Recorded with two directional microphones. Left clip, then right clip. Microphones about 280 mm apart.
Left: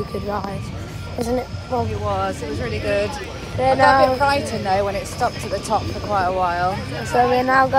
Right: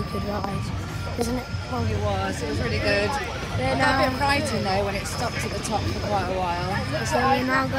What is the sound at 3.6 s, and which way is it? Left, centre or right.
Speech, centre.